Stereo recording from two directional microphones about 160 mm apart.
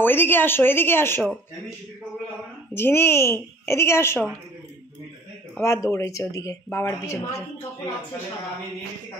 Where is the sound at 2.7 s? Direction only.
15° left (ahead or behind).